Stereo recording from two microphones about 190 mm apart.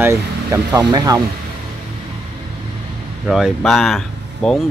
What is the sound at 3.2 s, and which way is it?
Speech, centre (ahead or behind).